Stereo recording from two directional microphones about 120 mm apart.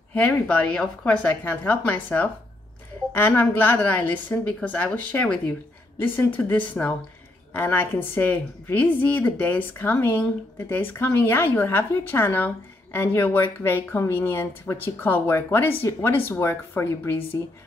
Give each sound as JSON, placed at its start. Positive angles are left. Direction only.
{"t": 0.1, "sound": "a woman's voice", "side_deg": 15}